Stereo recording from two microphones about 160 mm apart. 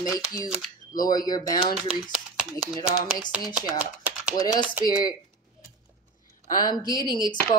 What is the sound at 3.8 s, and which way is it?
Typing, 10° right (ahead or behind).